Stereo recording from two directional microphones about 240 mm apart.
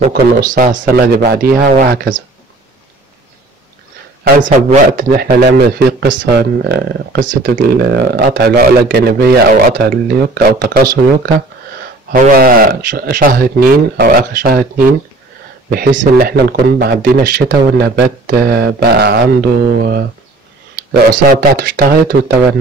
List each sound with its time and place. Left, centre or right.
0.1 s a man's voice: right
4.2 s a man's voice: right
12.1 s a man's voice: right
21.3 s a man's voice: right